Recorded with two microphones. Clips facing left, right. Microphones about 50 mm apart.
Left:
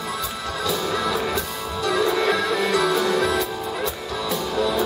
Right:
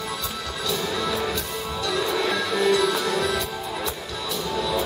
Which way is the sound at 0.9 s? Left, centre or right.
Centre.